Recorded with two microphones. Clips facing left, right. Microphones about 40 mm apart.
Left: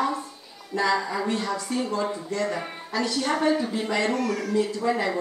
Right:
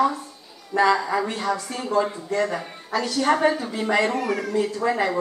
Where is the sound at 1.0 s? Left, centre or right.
Centre.